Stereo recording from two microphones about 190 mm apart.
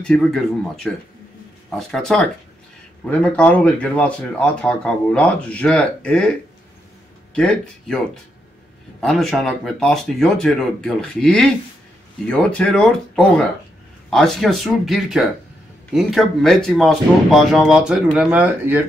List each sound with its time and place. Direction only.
0.0 s speech: 5° left (ahead or behind)
7.3 s speech: 5° left (ahead or behind)
9.0 s speech: centre (ahead or behind)